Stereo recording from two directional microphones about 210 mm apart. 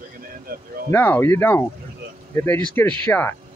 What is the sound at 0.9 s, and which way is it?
Speech, 10° left (ahead or behind).